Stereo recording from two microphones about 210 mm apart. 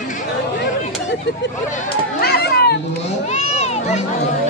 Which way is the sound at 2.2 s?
50° left (ahead or behind).